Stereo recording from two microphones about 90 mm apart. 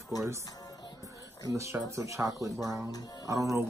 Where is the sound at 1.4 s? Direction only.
35° right (ahead or behind).